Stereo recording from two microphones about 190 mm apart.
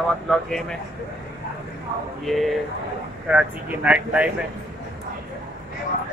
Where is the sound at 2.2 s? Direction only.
Centre (ahead or behind).